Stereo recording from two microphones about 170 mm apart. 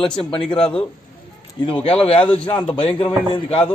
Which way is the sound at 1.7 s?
35° left (ahead or behind).